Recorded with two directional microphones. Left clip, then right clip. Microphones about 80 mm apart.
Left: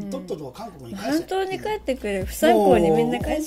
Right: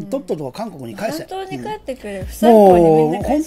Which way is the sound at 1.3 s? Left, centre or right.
Left.